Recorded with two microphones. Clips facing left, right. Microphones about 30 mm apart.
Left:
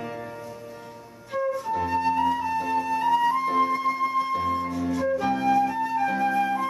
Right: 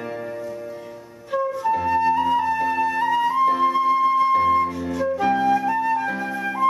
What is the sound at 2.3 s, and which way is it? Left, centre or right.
Flute, centre.